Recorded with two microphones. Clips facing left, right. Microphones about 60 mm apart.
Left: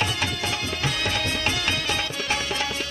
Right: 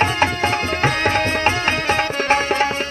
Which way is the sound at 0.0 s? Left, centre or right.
Right.